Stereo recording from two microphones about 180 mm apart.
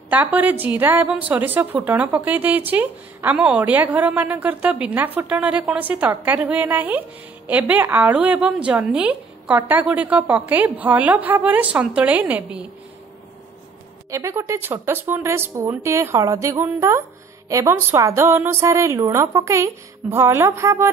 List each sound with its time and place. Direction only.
0.1 s a woman's voice: 10° right (ahead or behind)
14.1 s a woman's voice: 15° right (ahead or behind)